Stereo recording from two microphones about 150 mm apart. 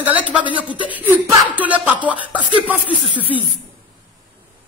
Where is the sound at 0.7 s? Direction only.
35° left (ahead or behind).